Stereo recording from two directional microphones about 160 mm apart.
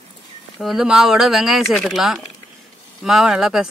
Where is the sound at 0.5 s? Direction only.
Centre (ahead or behind).